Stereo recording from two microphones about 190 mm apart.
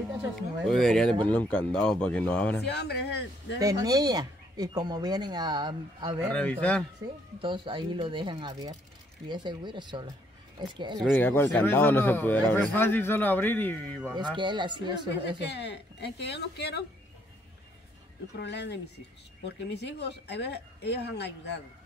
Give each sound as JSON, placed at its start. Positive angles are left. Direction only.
{"t": 0.4, "sound": "a man's voice", "side_deg": 0}
{"t": 2.6, "sound": "speech", "side_deg": 60}
{"t": 3.5, "sound": "speech", "side_deg": -20}
{"t": 7.3, "sound": "speech", "side_deg": -25}
{"t": 11.1, "sound": "a man's voice", "side_deg": 10}
{"t": 14.1, "sound": "speech", "side_deg": -25}
{"t": 15.4, "sound": "speech", "side_deg": 65}
{"t": 18.4, "sound": "speech", "side_deg": 65}